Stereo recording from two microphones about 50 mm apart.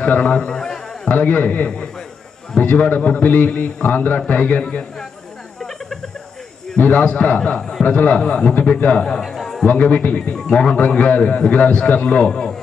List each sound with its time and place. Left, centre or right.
0.0 s speech: left
0.5 s speech: centre
1.0 s a man's voice: left
2.9 s a man's voice: left
6.8 s a man's voice: left
9.0 s a man's voice: centre
9.7 s a man's voice: left
10.5 s a man's voice: centre
10.8 s a man's voice: left
12.3 s a man's voice: centre